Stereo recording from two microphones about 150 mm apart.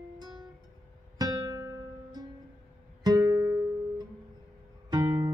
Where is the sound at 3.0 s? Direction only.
25° right (ahead or behind).